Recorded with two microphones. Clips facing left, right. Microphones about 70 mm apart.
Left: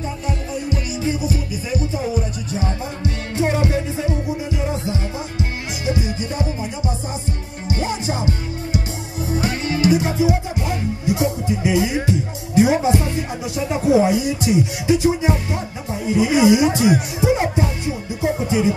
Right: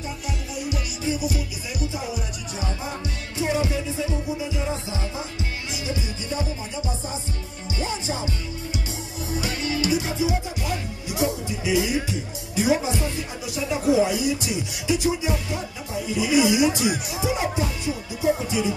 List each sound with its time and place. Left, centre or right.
0.7 s music: left
3.3 s music: left
7.7 s music: left
9.3 s music: left
11.1 s speech: left
17.2 s music: left
18.2 s speech: left